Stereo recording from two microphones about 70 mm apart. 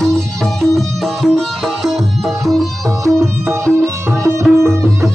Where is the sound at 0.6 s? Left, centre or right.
Centre.